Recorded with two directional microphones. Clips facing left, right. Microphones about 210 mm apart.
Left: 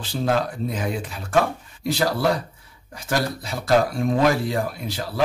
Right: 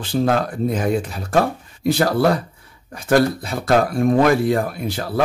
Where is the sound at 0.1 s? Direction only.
55° right (ahead or behind).